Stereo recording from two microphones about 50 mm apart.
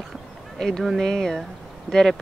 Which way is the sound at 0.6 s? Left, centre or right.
Centre.